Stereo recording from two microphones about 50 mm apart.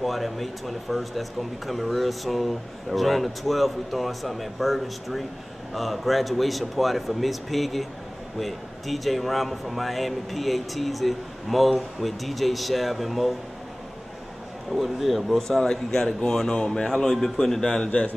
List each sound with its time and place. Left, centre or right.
0.0 s speech: centre
14.7 s speech: centre